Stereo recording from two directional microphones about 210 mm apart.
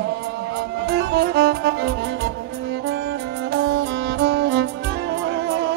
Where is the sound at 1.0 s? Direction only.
50° right (ahead or behind).